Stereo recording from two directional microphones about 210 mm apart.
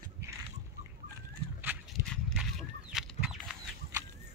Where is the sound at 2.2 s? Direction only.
Centre (ahead or behind).